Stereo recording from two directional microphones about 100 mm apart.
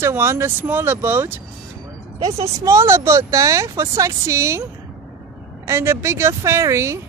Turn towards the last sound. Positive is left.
turn(degrees=-30)  # may be behind; listen again after turning